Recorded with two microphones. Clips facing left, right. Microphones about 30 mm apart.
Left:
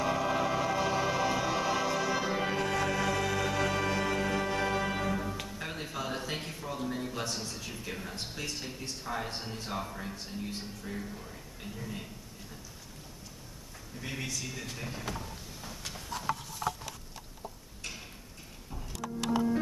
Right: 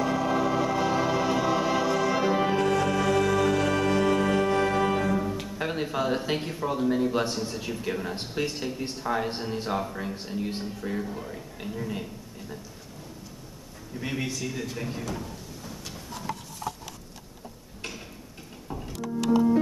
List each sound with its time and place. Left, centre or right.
0.0 s music: centre
5.7 s a man's voice: right
13.9 s speech: right
14.3 s a man's voice: centre
15.6 s a sound: centre
16.2 s a sound: centre
18.8 s music: right